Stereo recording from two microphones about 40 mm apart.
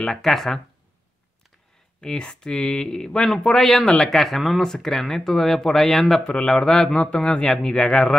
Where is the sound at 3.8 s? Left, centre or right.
Centre.